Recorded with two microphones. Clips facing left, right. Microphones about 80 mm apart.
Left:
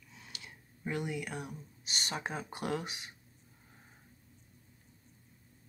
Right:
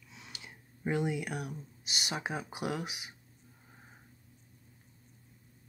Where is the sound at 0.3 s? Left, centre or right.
Right.